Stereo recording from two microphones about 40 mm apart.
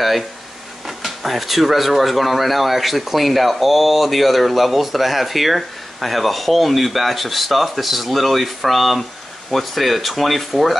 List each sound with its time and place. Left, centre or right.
0.8 s speech: centre